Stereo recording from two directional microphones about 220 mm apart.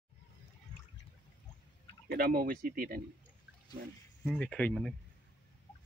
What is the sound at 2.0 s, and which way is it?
Speech, 45° right (ahead or behind).